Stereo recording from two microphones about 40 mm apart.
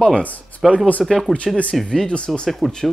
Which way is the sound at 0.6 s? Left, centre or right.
Centre.